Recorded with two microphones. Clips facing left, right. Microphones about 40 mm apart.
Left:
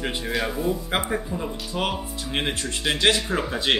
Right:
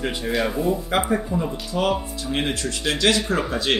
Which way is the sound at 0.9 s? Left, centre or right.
Left.